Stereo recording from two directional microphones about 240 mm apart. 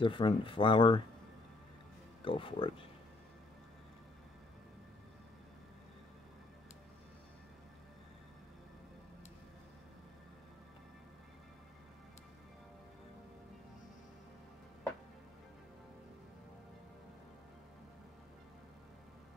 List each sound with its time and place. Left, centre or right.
0.0 s speech: left
2.2 s speech: left